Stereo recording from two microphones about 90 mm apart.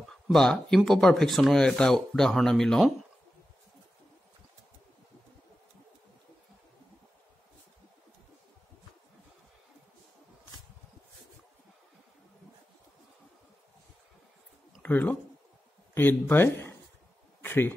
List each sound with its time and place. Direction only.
0.1 s speech: 5° left (ahead or behind)
14.8 s a man's voice: 20° left (ahead or behind)